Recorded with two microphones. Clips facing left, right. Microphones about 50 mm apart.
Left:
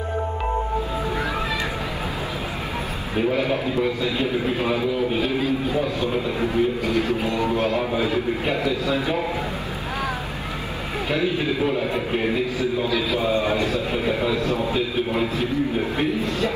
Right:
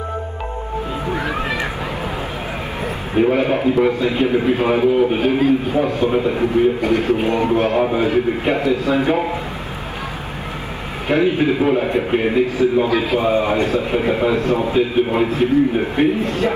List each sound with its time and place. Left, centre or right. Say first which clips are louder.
3.3 s a man's voice: right 6 dB; right
6.0 s a man's voice: right 6 dB; right
11.1 s a man's voice: right 8 dB; right
12.5 s a man's voice: right 7 dB; right